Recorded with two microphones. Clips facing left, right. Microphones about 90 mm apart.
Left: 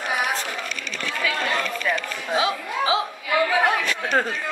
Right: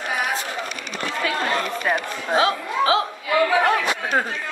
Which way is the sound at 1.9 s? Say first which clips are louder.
Right 2 dB; 45° right (ahead or behind).